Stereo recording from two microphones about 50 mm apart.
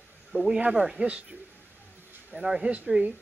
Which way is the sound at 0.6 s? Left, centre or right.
Right.